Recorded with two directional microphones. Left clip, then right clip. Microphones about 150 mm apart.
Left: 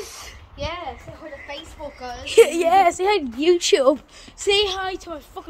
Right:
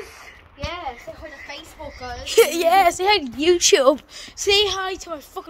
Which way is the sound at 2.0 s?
60° right (ahead or behind).